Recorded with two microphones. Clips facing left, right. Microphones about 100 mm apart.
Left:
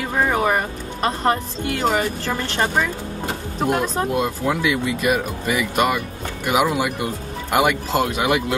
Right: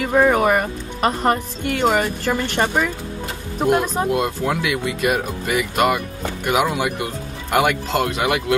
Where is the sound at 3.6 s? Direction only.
5° right (ahead or behind).